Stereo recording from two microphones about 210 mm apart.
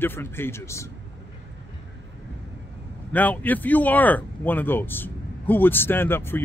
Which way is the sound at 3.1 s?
10° left (ahead or behind).